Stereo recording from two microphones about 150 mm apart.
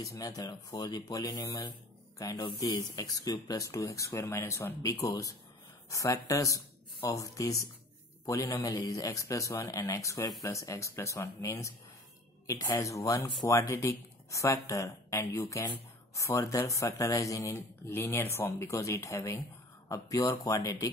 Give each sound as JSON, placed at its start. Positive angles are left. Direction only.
{"t": 0.0, "sound": "speech", "side_deg": 25}